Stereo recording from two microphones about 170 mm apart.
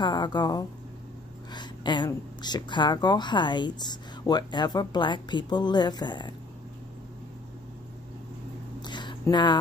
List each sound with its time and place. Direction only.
0.0 s speech: 25° left (ahead or behind)
8.8 s a sound: 25° left (ahead or behind)
9.3 s speech: 25° left (ahead or behind)